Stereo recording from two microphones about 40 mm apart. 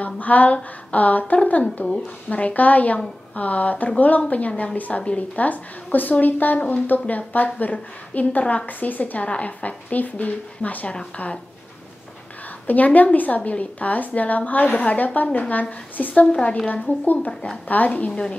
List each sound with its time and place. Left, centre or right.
0.0 s a sound: left
0.9 s a woman's voice: left
9.2 s a woman's voice: left
12.6 s a woman's voice: left
13.4 s a woman's voice: left
16.0 s a woman's voice: left
16.3 s a woman's voice: left
16.6 s a woman's voice: left